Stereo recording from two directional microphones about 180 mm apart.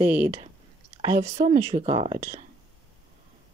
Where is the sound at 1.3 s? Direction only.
40° right (ahead or behind).